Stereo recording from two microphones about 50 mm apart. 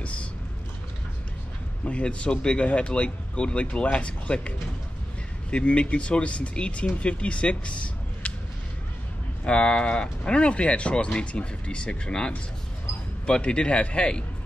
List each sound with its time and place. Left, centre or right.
0.0 s vehicle: left
1.9 s speech: left
9.4 s speech: left
13.3 s speech: centre